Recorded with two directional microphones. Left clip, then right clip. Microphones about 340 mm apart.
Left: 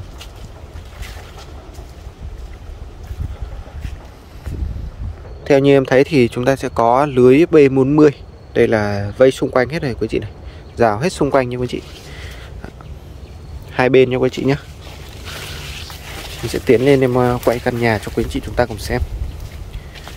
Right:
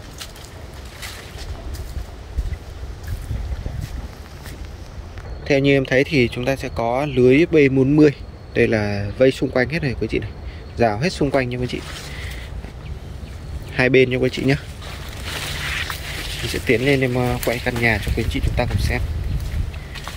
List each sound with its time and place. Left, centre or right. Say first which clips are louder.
5.4 s speech: left 5 dB; centre
13.7 s speech: left 3 dB; centre
16.7 s speech: left 6 dB; left
18.0 s speech: left 4 dB; centre